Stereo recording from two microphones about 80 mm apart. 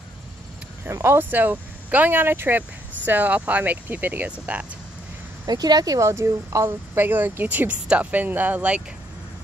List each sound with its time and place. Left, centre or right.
0.8 s speech: right; by 4.6 s centre
5.5 s speech: right
5.9 s speech: right; by 8.8 s centre